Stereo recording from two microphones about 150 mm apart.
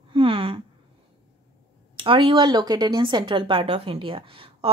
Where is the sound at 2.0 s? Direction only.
35° right (ahead or behind).